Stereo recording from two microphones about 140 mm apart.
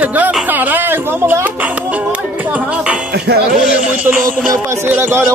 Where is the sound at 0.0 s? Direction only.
10° right (ahead or behind).